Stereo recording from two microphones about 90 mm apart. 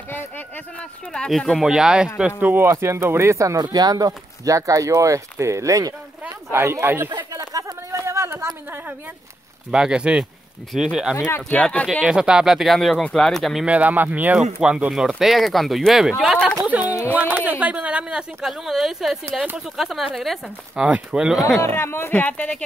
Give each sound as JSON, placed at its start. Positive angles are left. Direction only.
{"t": 0.7, "sound": "speech", "side_deg": 10}
{"t": 1.6, "sound": "speech", "side_deg": -5}
{"t": 2.4, "sound": "speech", "side_deg": -25}
{"t": 6.5, "sound": "speech", "side_deg": -25}
{"t": 7.1, "sound": "a sound", "side_deg": -45}
{"t": 9.7, "sound": "speech", "side_deg": -10}
{"t": 11.1, "sound": "speech", "side_deg": 25}
{"t": 11.6, "sound": "speech", "side_deg": 15}
{"t": 12.0, "sound": "speech", "side_deg": -10}
{"t": 13.7, "sound": "speech", "side_deg": -15}
{"t": 16.7, "sound": "speech", "side_deg": -15}
{"t": 21.7, "sound": "speech", "side_deg": 25}